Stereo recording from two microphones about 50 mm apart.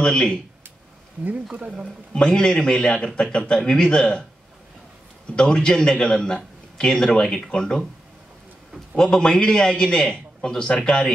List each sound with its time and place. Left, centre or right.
0.0 s speech: centre
1.2 s speech: right
2.1 s a man's voice: centre
5.3 s a man's voice: centre
8.9 s a man's voice: centre